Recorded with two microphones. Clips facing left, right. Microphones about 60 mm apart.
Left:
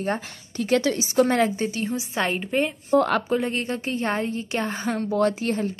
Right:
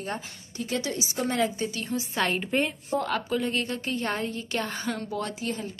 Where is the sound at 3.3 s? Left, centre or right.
Left.